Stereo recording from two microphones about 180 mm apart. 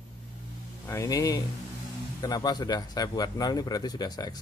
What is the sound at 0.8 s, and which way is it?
Speech, 15° left (ahead or behind).